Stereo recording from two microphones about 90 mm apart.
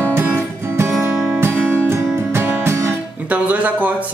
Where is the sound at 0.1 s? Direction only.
20° right (ahead or behind).